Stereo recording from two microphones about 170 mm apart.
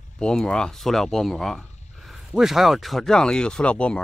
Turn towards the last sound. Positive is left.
turn(degrees=5)  # may be behind; listen again after turning